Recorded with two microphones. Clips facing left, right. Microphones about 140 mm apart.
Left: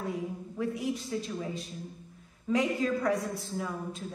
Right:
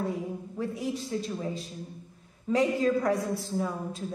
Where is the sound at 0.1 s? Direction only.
35° right (ahead or behind).